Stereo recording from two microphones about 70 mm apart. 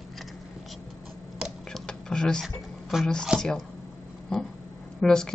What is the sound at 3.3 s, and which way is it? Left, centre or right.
Speech, centre.